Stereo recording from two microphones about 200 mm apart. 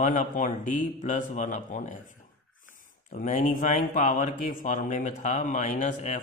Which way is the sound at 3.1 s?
40° left (ahead or behind).